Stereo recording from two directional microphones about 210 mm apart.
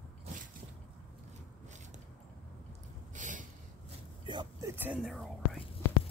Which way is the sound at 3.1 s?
35° right (ahead or behind).